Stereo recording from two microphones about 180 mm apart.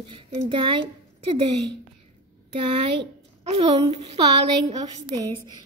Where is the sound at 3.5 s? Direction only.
35° right (ahead or behind).